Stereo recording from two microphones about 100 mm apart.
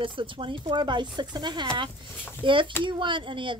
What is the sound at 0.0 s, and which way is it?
A woman's voice, 55° right (ahead or behind).